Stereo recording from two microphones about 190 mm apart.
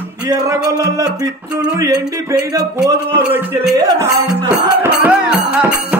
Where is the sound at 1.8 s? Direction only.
20° right (ahead or behind).